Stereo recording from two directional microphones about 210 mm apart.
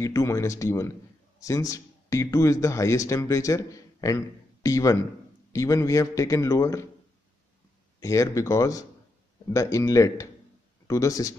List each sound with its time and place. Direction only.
0.0 s speech: 15° left (ahead or behind)
8.0 s speech: 15° left (ahead or behind)